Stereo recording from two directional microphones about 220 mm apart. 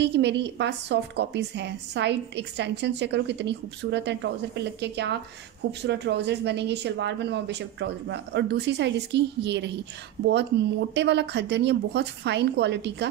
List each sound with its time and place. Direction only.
0.0 s a woman's voice: 50° right (ahead or behind)
11.0 s a woman's voice: 50° right (ahead or behind)